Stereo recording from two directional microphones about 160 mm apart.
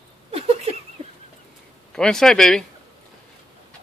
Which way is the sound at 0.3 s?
40° right (ahead or behind).